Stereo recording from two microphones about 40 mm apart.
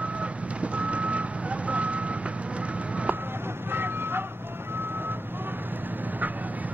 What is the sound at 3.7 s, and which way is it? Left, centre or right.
Vehicle, right.